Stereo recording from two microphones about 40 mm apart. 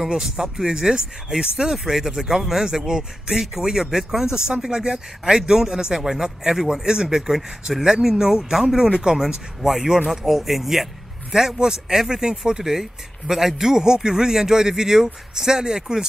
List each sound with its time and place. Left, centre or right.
0.0 s speech: centre
8.9 s speech: right
9.6 s speech: centre